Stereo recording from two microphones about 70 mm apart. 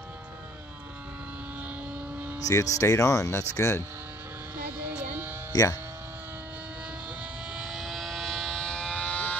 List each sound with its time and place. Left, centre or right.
2.3 s speech: left
4.6 s a sound: right
5.5 s speech: left
7.5 s vehicle: centre